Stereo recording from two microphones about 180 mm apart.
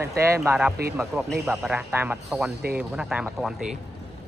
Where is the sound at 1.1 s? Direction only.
Centre (ahead or behind).